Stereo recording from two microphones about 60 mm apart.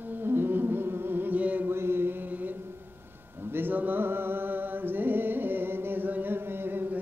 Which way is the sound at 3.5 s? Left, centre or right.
Right.